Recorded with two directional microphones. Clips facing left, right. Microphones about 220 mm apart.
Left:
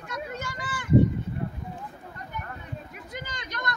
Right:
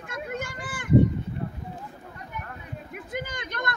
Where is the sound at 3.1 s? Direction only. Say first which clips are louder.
Right 6 dB; 55° right (ahead or behind).